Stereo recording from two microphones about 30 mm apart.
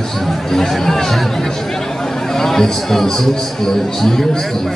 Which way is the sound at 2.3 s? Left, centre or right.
Centre.